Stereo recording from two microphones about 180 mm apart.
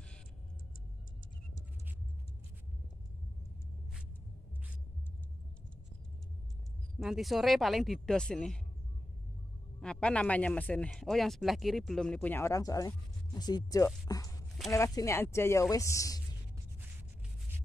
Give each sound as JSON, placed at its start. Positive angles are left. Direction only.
{"t": 7.0, "sound": "speech", "side_deg": 0}
{"t": 9.8, "sound": "speech", "side_deg": 5}